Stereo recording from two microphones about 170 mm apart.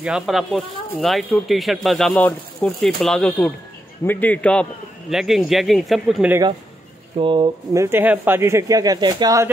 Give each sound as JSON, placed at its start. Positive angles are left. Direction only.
{"t": 0.0, "sound": "a man's voice", "side_deg": 0}
{"t": 7.2, "sound": "speech", "side_deg": -30}
{"t": 7.7, "sound": "speech", "side_deg": -15}